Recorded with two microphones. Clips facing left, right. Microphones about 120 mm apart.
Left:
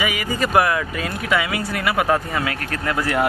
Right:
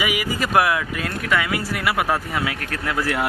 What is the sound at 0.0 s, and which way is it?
Speech, 10° right (ahead or behind).